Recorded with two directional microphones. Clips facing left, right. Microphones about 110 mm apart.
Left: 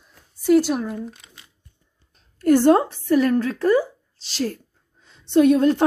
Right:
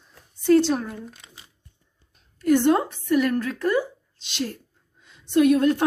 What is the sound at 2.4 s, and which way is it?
A woman's voice, 40° left (ahead or behind).